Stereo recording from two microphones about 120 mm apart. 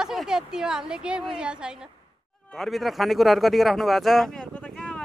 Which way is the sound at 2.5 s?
Centre (ahead or behind).